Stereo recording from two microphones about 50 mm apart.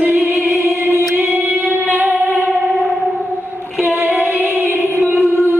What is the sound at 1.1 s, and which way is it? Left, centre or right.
Music, right.